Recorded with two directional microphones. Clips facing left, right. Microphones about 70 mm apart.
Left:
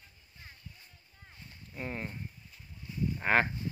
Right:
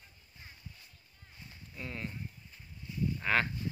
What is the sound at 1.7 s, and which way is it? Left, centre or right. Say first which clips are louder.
Speech: left 3 dB; left.